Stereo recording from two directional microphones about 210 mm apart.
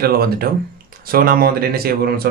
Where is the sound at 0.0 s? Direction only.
45° right (ahead or behind).